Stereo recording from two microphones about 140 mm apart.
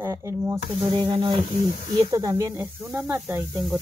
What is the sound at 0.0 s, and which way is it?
Speech, 20° right (ahead or behind).